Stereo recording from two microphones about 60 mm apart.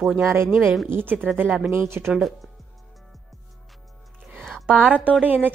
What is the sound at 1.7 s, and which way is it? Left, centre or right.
Speech, right.